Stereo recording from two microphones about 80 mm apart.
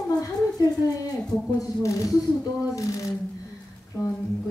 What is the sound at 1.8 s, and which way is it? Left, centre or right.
Speech, left.